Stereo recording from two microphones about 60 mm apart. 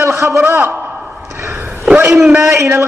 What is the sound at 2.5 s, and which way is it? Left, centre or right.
Speech, right.